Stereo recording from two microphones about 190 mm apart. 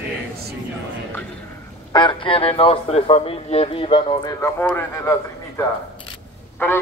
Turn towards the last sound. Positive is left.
turn(degrees=10)  # may be behind; listen again after turning